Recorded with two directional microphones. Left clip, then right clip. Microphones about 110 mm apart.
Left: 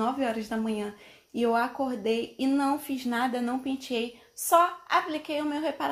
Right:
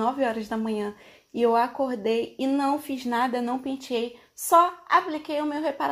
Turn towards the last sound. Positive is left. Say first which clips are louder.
# right 3 dB
turn(degrees=-20)  # may be behind; listen again after turning